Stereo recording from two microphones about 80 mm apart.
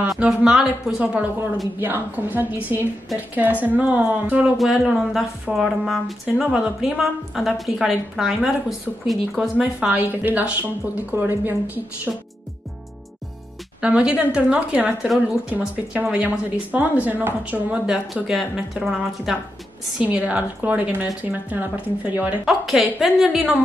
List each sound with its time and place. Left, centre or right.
0.2 s speech: centre
1.8 s a woman's voice: right
4.6 s a woman's voice: centre
9.6 s a woman's voice: centre
13.7 s a woman's voice: centre
17.8 s a woman's voice: centre
20.0 s a woman's voice: centre
22.4 s a woman's voice: centre